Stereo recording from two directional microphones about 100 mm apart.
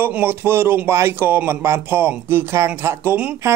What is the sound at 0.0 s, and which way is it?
Speech, 20° right (ahead or behind).